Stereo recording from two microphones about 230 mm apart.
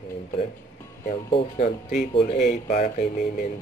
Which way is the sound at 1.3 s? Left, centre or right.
Left.